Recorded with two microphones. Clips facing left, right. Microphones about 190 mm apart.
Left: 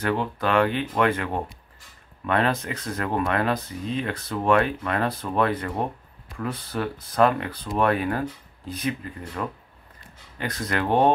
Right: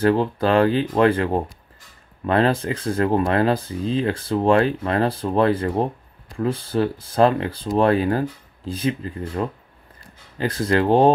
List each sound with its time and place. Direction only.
0.0 s speech: 30° right (ahead or behind)